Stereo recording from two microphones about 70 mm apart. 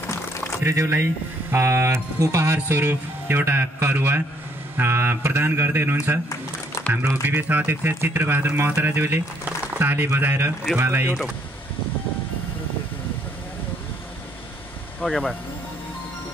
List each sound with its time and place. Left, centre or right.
0.6 s speech: right
2.5 s speech: right
7.2 s speech: right
15.0 s speech: centre